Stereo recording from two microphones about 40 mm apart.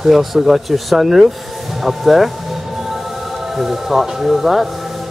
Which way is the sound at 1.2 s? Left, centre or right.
Centre.